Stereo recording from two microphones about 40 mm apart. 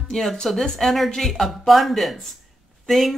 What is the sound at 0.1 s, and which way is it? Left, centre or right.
Speech, left.